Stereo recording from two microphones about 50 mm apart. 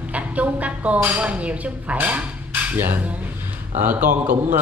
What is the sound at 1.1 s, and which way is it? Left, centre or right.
Speech, right.